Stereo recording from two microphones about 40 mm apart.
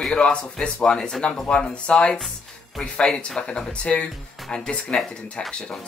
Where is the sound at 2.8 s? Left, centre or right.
Centre.